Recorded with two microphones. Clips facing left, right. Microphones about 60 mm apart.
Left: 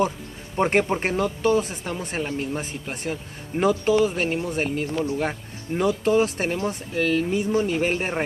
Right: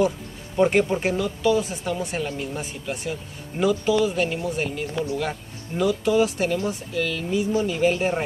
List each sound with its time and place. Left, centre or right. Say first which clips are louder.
0.6 s speech: right 1 dB; left